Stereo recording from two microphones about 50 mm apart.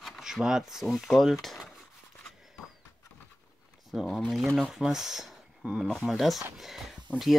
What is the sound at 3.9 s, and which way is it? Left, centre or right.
Speech, centre.